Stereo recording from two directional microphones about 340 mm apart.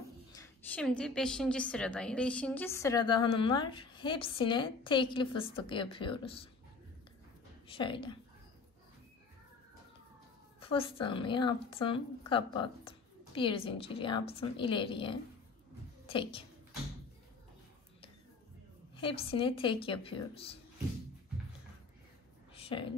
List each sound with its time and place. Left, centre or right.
0.3 s a woman's voice: centre
7.6 s a woman's voice: centre
10.6 s a woman's voice: centre
18.9 s a woman's voice: centre
22.5 s a sound: centre